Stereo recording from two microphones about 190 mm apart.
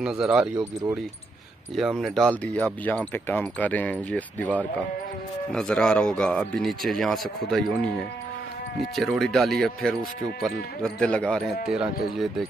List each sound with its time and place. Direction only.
0.0 s speech: 5° right (ahead or behind)
1.8 s speech: centre (ahead or behind)
5.5 s speech: 5° left (ahead or behind)
8.9 s speech: centre (ahead or behind)